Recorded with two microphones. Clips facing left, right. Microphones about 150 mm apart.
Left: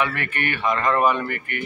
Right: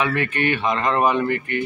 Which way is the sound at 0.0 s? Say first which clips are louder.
Right 4 dB; 20° right (ahead or behind).